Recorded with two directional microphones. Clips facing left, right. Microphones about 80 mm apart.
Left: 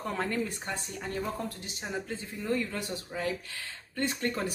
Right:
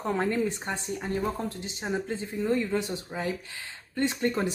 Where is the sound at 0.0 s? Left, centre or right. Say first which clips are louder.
Right 5 dB; right.